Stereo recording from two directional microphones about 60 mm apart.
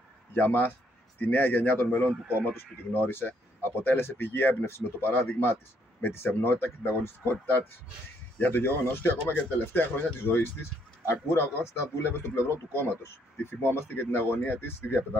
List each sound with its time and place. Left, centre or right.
0.3 s speech: left
2.2 s speech: right
2.5 s speech: left